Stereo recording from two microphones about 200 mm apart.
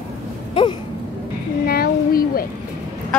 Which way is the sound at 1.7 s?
45° left (ahead or behind).